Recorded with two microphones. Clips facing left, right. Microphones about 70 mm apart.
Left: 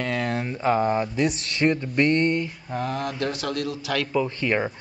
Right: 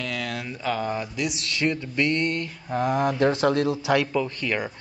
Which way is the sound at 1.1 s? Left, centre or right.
Left.